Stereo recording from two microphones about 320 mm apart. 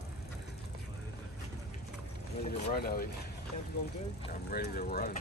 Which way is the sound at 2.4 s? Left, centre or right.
Left.